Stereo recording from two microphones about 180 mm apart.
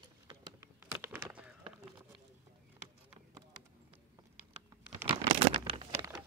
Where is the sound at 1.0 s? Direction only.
10° right (ahead or behind).